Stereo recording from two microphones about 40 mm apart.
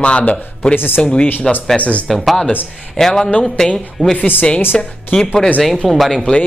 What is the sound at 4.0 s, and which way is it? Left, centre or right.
Speech, right.